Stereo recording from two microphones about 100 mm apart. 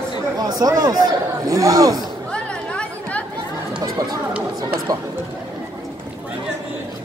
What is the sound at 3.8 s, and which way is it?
Chatter, 40° right (ahead or behind).